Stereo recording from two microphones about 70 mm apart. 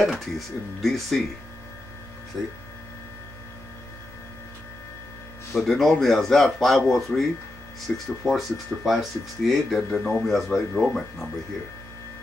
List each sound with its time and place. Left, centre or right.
0.0 s speech: centre
2.3 s speech: centre
5.5 s speech: centre
7.9 s speech: centre
8.3 s speech: centre